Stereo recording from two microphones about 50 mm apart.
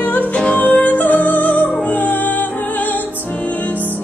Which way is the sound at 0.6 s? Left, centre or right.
Left.